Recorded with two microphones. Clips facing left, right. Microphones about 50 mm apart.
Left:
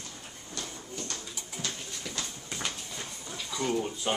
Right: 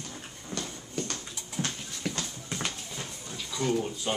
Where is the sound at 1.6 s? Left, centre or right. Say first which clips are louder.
Right 4 dB; right.